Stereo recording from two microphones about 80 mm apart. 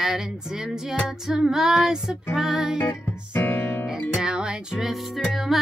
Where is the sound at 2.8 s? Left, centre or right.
Left.